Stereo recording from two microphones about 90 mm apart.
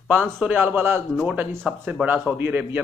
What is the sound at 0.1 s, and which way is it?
Speech, 15° right (ahead or behind).